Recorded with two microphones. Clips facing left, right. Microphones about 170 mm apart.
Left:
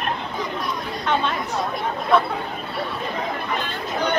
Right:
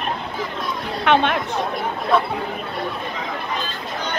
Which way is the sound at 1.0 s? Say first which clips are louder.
Right 6 dB; 70° right (ahead or behind).